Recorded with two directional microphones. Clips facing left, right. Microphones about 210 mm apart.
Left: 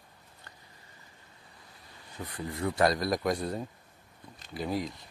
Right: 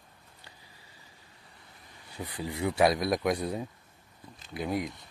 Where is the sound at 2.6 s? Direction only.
5° right (ahead or behind).